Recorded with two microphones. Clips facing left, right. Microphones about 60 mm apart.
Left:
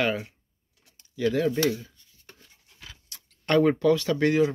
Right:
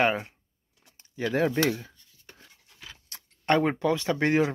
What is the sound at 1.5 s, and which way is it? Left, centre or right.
Speech, right.